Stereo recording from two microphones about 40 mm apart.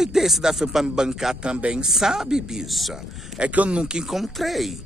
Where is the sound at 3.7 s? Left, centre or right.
Right.